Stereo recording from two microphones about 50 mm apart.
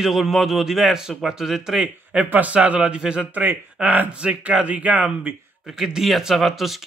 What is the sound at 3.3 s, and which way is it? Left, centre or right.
Speech, right.